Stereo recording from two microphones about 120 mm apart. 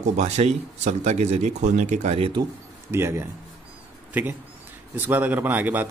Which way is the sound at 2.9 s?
20° right (ahead or behind).